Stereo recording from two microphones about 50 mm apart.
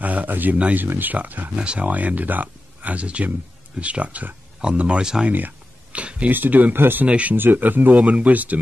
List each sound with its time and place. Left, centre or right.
0.0 s speech: right
1.6 s speech: right
1.9 s speech: right
5.9 s a sound: right
6.3 s speech: right
7.1 s speech: right
7.3 s speech: right